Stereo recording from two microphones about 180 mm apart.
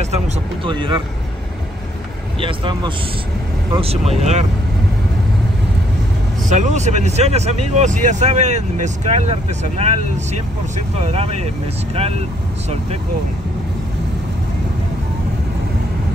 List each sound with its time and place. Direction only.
0.7 s speech: 25° right (ahead or behind)
2.4 s speech: 30° right (ahead or behind)
6.5 s speech: 40° right (ahead or behind)